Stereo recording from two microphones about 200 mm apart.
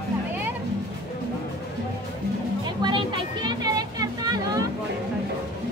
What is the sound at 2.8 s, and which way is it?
Music, 25° right (ahead or behind).